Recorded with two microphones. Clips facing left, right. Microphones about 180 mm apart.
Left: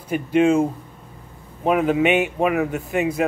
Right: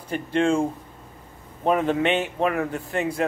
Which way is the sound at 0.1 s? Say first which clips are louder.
Left 5 dB; 10° left (ahead or behind).